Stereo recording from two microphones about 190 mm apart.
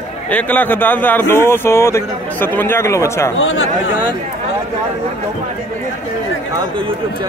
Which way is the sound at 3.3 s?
90° left.